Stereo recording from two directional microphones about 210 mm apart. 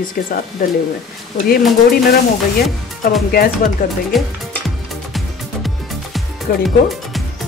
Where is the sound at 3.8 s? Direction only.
35° left (ahead or behind).